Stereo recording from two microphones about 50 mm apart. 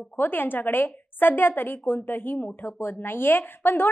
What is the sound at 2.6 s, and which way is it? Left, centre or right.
A woman's voice, left.